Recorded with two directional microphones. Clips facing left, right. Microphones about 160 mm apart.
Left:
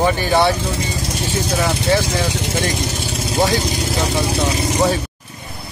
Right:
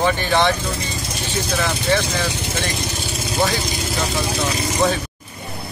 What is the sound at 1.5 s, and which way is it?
Speech, 15° left (ahead or behind).